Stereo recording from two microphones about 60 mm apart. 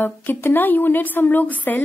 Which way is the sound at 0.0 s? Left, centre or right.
Left.